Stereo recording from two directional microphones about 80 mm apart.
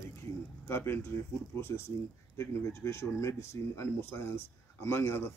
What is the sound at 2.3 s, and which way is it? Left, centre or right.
Speech, left.